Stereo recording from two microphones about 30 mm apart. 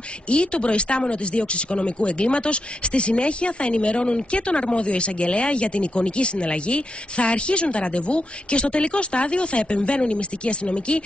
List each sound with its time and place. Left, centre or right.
0.3 s speech: left